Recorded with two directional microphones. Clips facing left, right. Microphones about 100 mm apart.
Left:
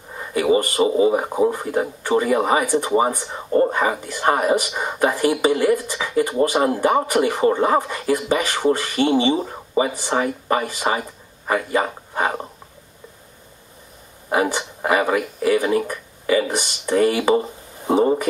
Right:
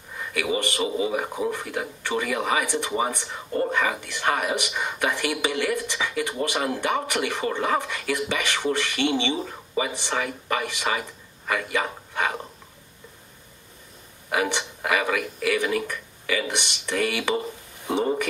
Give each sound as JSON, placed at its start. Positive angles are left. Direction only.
{"t": 0.1, "sound": "speech", "side_deg": 35}
{"t": 14.3, "sound": "speech", "side_deg": 35}